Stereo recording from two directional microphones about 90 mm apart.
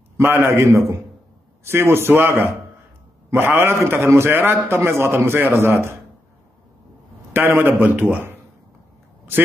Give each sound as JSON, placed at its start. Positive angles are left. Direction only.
{"t": 0.2, "sound": "a man's voice", "side_deg": -25}
{"t": 7.3, "sound": "a man's voice", "side_deg": -25}